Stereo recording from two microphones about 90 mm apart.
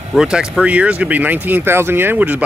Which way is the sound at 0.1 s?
5° right (ahead or behind).